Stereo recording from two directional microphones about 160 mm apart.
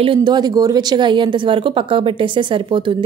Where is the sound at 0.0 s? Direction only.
30° right (ahead or behind).